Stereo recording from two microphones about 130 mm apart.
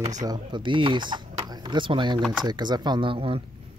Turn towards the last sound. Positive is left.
turn(degrees=-45)  # may be behind; listen again after turning